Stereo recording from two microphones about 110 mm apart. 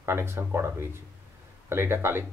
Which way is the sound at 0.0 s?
20° right (ahead or behind).